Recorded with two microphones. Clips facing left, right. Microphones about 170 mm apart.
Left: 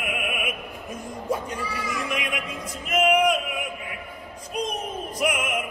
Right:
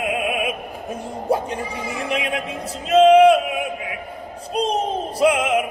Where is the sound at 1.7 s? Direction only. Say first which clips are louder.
Right 4 dB; 25° right (ahead or behind).